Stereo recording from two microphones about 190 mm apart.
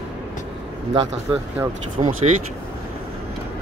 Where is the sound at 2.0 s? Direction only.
30° right (ahead or behind).